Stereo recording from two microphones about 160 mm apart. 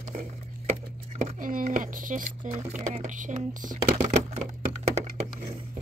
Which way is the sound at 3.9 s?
40° right (ahead or behind).